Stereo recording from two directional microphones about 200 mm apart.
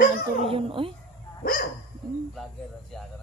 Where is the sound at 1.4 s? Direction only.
45° left (ahead or behind).